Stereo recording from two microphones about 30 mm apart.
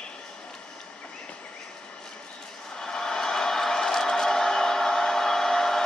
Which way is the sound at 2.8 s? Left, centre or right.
Left.